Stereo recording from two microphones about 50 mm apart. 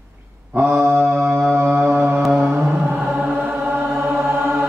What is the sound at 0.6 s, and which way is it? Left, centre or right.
Mantra, right.